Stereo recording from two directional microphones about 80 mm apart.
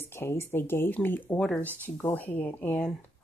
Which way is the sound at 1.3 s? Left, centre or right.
Centre.